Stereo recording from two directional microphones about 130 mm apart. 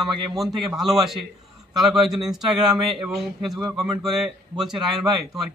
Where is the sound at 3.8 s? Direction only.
Centre (ahead or behind).